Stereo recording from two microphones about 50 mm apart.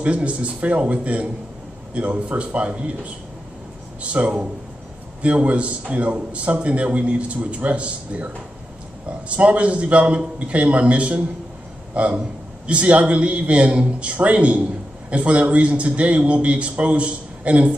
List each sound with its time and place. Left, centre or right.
0.0 s a man's voice: right
4.0 s a man's voice: right
9.4 s a man's voice: right